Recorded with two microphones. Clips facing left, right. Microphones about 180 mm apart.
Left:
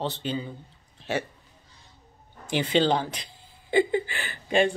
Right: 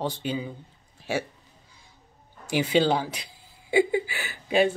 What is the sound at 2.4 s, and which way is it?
Speech, 10° right (ahead or behind).